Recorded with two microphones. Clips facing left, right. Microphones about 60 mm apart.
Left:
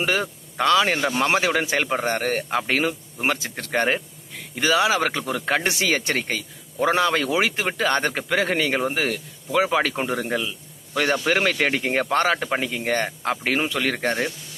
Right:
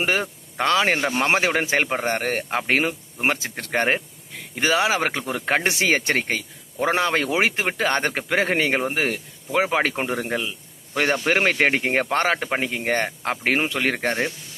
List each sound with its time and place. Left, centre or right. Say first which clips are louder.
0.0 s speech: even; right